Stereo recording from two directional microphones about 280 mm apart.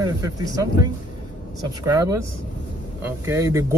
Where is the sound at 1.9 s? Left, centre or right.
Centre.